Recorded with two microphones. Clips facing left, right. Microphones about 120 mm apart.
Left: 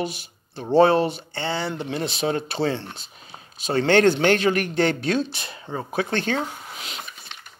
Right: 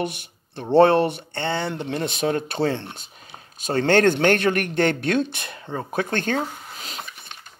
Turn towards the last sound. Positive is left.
turn(degrees=-40)  # may be behind; listen again after turning